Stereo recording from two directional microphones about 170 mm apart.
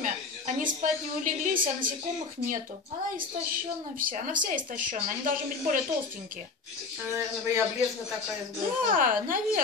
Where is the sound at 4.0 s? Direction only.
55° right (ahead or behind).